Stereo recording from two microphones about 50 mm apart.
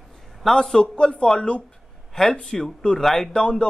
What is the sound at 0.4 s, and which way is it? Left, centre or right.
A man's voice, centre.